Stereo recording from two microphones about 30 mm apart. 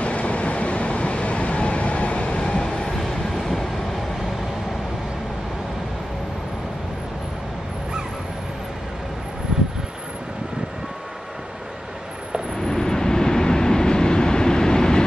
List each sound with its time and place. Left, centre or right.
0.0 s train: left
2.4 s train: left
3.0 s train: centre
12.5 s train: centre